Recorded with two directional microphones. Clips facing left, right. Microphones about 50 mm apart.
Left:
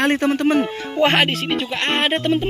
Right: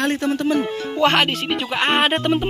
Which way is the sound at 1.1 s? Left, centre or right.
Centre.